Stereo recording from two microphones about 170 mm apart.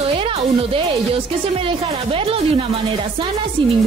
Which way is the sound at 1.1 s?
30° right (ahead or behind).